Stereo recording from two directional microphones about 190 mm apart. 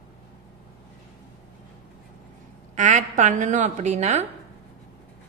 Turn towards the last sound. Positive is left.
turn(degrees=-35)  # may be behind; listen again after turning